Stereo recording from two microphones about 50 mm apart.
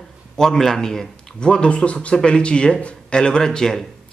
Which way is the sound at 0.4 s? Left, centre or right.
Centre.